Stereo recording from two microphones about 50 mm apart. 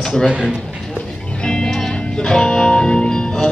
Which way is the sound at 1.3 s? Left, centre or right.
Centre.